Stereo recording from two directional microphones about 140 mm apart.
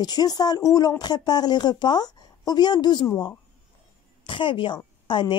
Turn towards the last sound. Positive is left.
turn(degrees=35)  # may be behind; listen again after turning